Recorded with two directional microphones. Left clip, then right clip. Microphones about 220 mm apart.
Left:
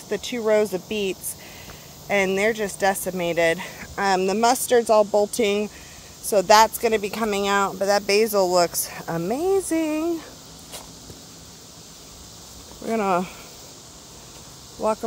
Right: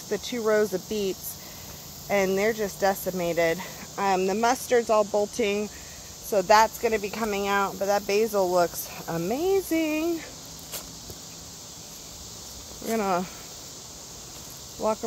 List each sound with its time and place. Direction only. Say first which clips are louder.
0.1 s speech: left 4 dB; 20° left (ahead or behind)
12.8 s speech: left 4 dB; 30° left (ahead or behind)
14.8 s speech: left 3 dB; 30° left (ahead or behind)